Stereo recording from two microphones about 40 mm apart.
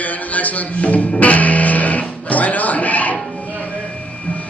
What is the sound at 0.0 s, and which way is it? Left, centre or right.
Music, left.